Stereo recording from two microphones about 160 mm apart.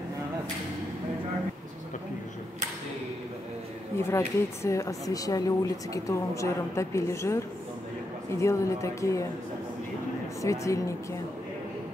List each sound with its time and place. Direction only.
4.1 s speech: 15° left (ahead or behind)
10.4 s speech: 20° left (ahead or behind)